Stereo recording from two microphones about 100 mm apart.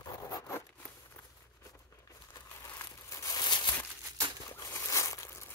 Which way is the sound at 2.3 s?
30° left (ahead or behind).